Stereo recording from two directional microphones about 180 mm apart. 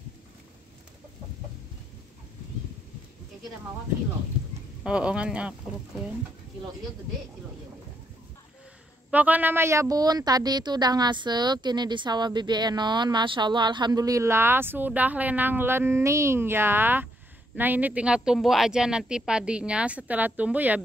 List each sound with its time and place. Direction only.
4.8 s speech: 5° right (ahead or behind)
9.1 s a woman's voice: 10° right (ahead or behind)